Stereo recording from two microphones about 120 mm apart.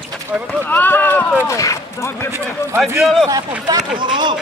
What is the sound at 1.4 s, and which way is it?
Speech, 25° left (ahead or behind).